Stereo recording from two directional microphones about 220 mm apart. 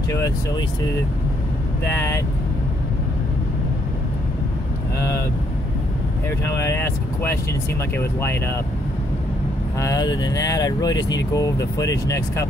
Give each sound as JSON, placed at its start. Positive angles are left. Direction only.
{"t": 0.1, "sound": "speech", "side_deg": 15}
{"t": 1.9, "sound": "speech", "side_deg": 10}
{"t": 6.4, "sound": "speech", "side_deg": 10}
{"t": 9.8, "sound": "speech", "side_deg": 15}